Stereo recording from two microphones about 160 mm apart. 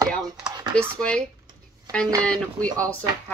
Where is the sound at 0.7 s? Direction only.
5° left (ahead or behind).